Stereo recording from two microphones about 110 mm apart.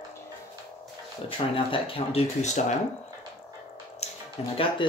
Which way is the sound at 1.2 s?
55° left (ahead or behind).